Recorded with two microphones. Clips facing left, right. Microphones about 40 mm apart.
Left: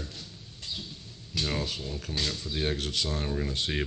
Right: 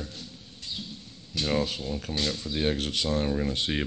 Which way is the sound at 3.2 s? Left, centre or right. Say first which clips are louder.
Right 4 dB; centre.